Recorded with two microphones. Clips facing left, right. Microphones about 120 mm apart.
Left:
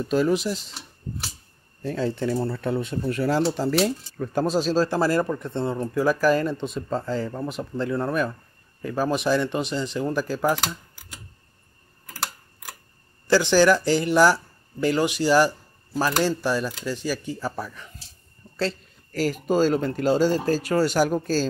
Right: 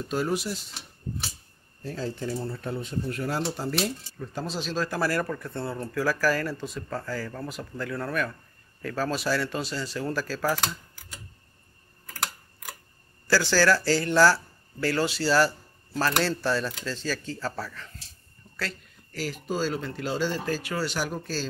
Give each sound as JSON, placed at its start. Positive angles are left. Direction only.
{"t": 0.1, "sound": "speech", "side_deg": 90}
{"t": 1.8, "sound": "speech", "side_deg": 80}
{"t": 4.2, "sound": "speech", "side_deg": 55}
{"t": 13.3, "sound": "speech", "side_deg": 20}
{"t": 19.1, "sound": "speech", "side_deg": 45}